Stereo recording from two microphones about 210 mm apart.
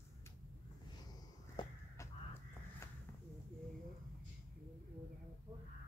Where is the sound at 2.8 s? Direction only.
15° left (ahead or behind).